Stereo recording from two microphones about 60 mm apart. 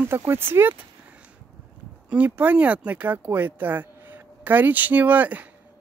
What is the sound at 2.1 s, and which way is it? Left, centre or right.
Speech, right.